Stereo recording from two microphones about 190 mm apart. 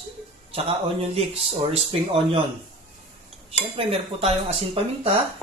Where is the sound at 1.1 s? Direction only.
30° right (ahead or behind).